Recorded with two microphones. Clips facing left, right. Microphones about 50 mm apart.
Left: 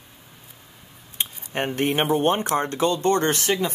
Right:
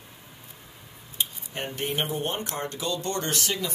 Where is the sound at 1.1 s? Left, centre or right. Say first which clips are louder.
Left 5 dB; left.